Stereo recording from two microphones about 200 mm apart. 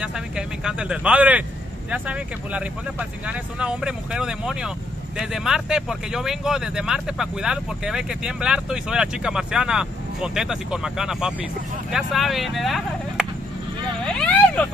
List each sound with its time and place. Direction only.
0.0 s speech: 5° right (ahead or behind)
14.0 s vehicle: 5° left (ahead or behind)